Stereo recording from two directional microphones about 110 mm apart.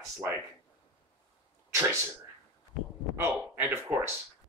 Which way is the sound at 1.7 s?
25° right (ahead or behind).